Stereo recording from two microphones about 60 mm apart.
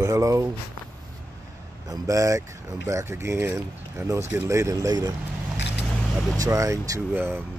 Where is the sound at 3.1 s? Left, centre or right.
Right.